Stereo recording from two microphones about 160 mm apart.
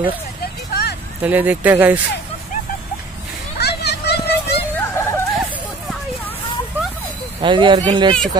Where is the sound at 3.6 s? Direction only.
90° left.